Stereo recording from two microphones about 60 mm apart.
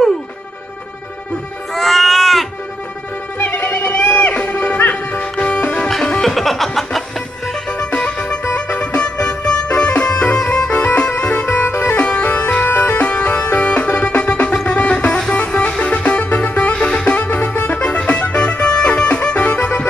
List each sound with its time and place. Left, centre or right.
1.7 s baby cry: centre
3.3 s music: left
5.9 s music: centre
7.7 s music: centre
11.6 s music: left
11.9 s bagpipes: left
15.8 s music: centre